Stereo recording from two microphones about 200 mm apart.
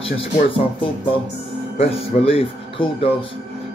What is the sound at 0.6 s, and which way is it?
Speech, 25° left (ahead or behind).